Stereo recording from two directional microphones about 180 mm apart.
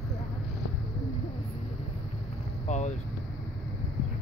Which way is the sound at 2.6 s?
40° left (ahead or behind).